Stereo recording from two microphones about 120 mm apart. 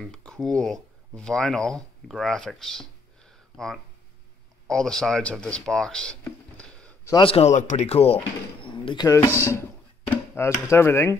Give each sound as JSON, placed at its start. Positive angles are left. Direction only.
{"t": 0.0, "sound": "speech", "side_deg": 5}
{"t": 6.2, "sound": "a sound", "side_deg": 10}
{"t": 7.2, "sound": "a man's voice", "side_deg": 50}
{"t": 7.4, "sound": "speech", "side_deg": 80}
{"t": 9.5, "sound": "speech", "side_deg": 20}